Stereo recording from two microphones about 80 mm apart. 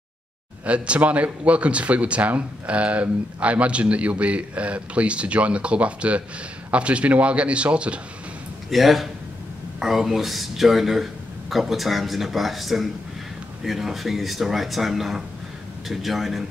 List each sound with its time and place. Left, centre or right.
0.7 s speech: centre
8.6 s speech: centre